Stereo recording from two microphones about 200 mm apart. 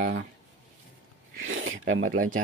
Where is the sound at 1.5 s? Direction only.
85° right.